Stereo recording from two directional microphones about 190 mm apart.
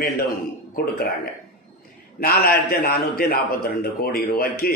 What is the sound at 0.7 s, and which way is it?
A man's voice, 50° left (ahead or behind).